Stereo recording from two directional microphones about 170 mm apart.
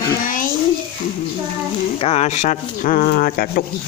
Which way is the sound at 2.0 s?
40° left (ahead or behind).